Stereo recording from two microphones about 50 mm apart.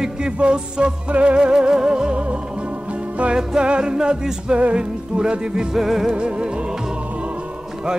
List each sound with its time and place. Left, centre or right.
0.0 s music: centre
6.1 s music: right